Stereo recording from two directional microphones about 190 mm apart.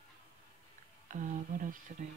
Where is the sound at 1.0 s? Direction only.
40° right (ahead or behind).